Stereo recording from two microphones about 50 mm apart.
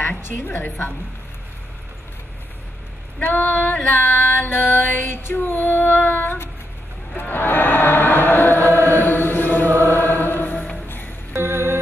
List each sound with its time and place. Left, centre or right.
0.2 s a woman's voice: left
3.2 s female singing: left
7.2 s chant: left
11.3 s music: right